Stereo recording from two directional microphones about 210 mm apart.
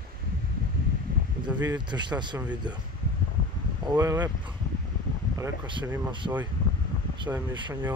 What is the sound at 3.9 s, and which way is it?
Speech, 15° right (ahead or behind).